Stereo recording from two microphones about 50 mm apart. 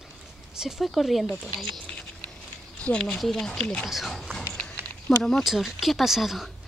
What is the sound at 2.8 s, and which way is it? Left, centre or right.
Speech, centre.